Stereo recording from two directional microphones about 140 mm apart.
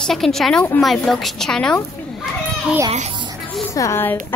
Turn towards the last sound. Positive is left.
turn(degrees=20)  # may be behind; listen again after turning